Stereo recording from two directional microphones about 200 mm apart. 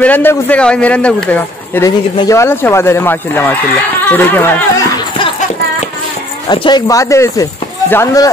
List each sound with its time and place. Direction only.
0.0 s a man's voice: 10° left (ahead or behind)
1.9 s a man's voice: 20° left (ahead or behind)
6.5 s a man's voice: 20° left (ahead or behind)